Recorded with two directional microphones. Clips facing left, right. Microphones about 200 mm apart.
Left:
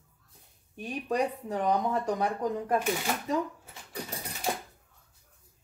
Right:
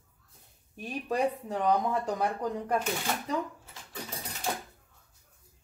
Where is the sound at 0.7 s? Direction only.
Centre (ahead or behind).